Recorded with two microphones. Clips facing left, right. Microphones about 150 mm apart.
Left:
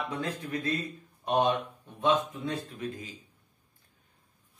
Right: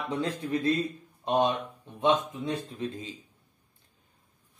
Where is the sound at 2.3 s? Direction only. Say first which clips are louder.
Right 2 dB; 25° right (ahead or behind).